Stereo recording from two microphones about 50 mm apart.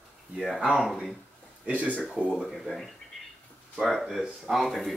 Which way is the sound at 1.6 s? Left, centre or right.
Right.